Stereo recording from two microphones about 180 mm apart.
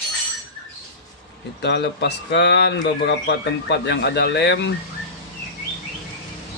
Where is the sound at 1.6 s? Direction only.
70° left (ahead or behind).